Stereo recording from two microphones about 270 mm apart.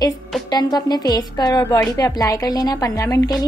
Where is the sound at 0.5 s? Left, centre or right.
Centre.